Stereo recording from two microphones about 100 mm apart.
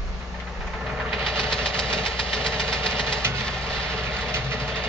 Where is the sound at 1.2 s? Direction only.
10° left (ahead or behind).